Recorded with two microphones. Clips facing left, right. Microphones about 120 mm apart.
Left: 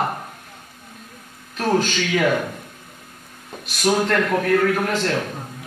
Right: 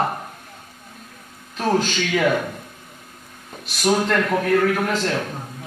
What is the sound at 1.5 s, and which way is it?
Speech, 5° right (ahead or behind).